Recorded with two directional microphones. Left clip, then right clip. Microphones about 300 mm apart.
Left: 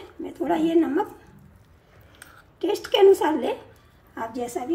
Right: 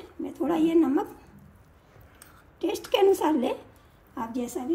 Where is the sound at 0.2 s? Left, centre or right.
Centre.